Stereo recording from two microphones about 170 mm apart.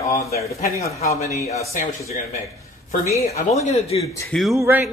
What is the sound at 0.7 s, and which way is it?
Speech, 20° left (ahead or behind).